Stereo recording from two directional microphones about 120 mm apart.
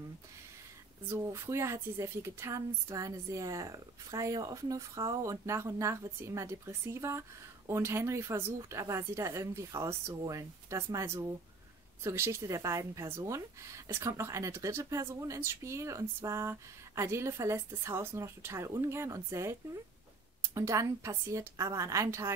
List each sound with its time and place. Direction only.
1.0 s speech: 25° right (ahead or behind)